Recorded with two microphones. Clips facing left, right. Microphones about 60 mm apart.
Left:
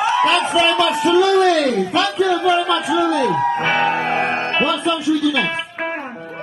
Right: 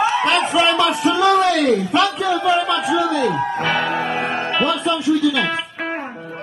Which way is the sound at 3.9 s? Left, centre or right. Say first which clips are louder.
Left 2 dB; left.